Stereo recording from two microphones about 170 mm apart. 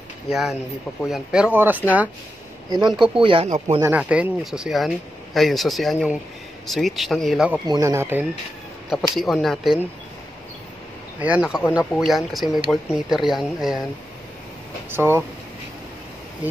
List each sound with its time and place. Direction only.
0.3 s speech: centre (ahead or behind)
2.7 s speech: 25° right (ahead or behind)
3.8 s speech: 10° right (ahead or behind)
7.6 s speech: 20° right (ahead or behind)
9.1 s speech: centre (ahead or behind)
11.1 s speech: 10° right (ahead or behind)
14.9 s speech: 15° right (ahead or behind)